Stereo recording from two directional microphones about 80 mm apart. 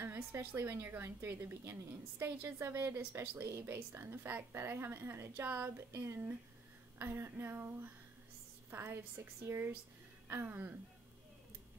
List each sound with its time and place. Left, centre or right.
0.0 s a woman's voice: right